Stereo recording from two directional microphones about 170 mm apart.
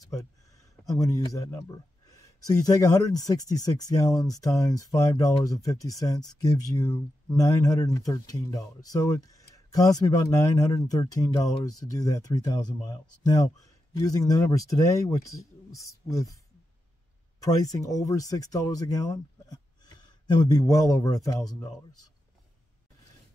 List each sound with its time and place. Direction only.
0.8 s speech: 20° left (ahead or behind)
9.3 s a sound: 20° left (ahead or behind)
10.5 s speech: 25° left (ahead or behind)
17.4 s speech: 20° left (ahead or behind)